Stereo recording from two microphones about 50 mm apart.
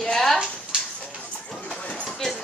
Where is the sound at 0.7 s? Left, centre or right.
Centre.